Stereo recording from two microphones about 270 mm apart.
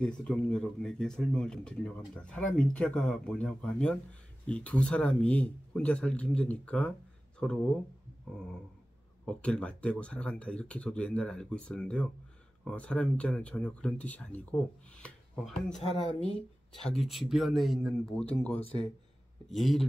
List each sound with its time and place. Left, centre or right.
0.0 s speech: centre
9.2 s speech: centre
16.8 s speech: centre